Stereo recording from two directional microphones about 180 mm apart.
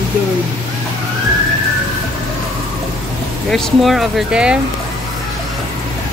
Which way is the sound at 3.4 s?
Centre (ahead or behind).